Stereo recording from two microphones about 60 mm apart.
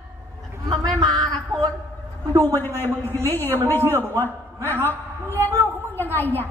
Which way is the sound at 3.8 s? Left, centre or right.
Right.